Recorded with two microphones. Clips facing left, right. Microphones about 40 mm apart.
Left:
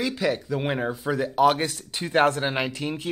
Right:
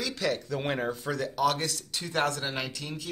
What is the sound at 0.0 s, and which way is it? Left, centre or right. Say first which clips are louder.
Speech: left 5 dB; centre.